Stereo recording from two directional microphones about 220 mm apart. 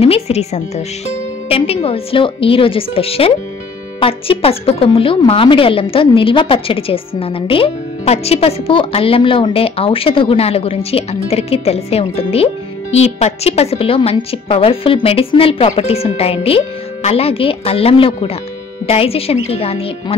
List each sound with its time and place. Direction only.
0.0 s a woman's voice: 30° left (ahead or behind)